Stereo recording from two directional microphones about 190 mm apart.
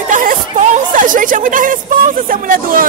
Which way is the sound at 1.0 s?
45° right (ahead or behind).